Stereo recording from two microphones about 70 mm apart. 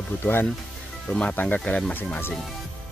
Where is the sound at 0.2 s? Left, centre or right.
Left.